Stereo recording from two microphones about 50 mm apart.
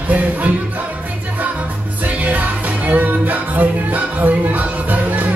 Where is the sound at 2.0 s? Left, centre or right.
Right.